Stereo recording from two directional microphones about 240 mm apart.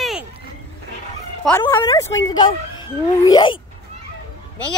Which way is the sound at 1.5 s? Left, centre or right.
Centre.